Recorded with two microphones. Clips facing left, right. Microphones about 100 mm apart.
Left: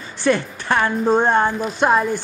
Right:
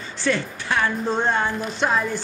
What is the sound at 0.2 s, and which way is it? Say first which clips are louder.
A woman's voice: left 5 dB; 50° left (ahead or behind).